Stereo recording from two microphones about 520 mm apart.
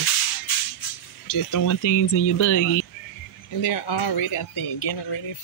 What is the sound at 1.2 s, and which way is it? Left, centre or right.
Speech, left.